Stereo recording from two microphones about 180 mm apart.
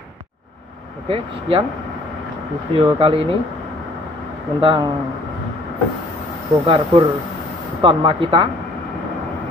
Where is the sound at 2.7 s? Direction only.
30° right (ahead or behind).